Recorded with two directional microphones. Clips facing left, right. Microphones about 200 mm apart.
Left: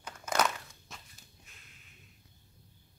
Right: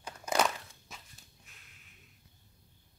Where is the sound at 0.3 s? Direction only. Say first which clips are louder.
Right 1 dB; 5° right (ahead or behind).